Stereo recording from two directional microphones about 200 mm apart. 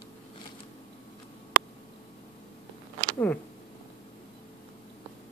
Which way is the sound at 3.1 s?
5° left (ahead or behind).